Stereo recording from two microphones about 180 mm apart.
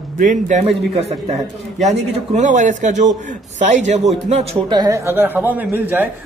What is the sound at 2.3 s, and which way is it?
Speech, 40° right (ahead or behind).